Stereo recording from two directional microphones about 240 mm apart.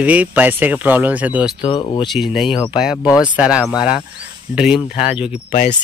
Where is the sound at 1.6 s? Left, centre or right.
Left.